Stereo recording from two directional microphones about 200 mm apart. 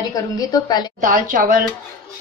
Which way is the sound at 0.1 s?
20° left (ahead or behind).